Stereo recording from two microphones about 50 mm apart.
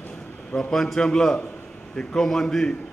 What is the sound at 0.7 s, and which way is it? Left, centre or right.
A man's voice, centre.